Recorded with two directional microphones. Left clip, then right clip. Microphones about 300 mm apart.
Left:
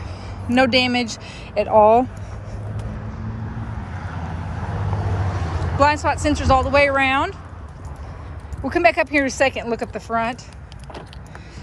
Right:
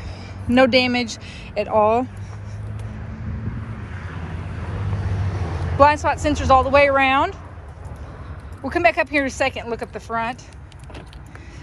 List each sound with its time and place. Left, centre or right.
0.2 s speech: centre
3.9 s vehicle: left
5.8 s speech: centre
8.6 s speech: centre